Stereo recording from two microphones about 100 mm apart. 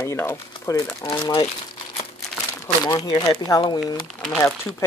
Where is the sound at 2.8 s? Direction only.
40° left (ahead or behind); by 4.7 s 25° left (ahead or behind).